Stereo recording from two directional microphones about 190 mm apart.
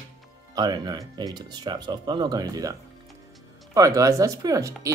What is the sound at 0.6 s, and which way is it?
Speech, 20° right (ahead or behind).